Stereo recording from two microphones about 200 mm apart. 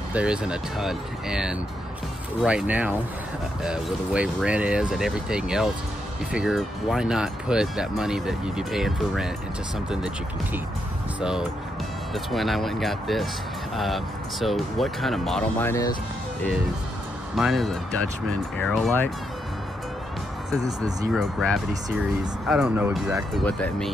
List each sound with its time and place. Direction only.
0.1 s speech: 5° right (ahead or behind)
15.6 s speech: 15° left (ahead or behind)
17.4 s speech: centre (ahead or behind)
20.6 s speech: 15° right (ahead or behind)
21.1 s speech: centre (ahead or behind)
23.3 s speech: 5° left (ahead or behind)